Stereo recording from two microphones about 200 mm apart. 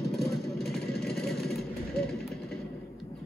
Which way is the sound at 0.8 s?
50° left (ahead or behind).